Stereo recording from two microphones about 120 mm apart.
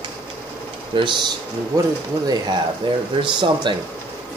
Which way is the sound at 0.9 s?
45° right (ahead or behind).